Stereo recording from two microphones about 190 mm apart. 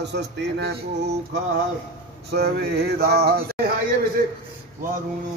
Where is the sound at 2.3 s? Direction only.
55° right (ahead or behind).